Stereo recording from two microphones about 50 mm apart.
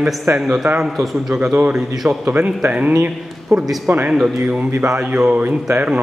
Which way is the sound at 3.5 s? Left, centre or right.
Right.